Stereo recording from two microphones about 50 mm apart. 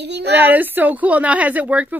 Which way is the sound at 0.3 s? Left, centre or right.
Right.